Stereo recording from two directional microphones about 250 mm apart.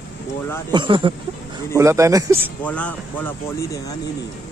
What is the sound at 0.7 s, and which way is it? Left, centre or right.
Speech, centre.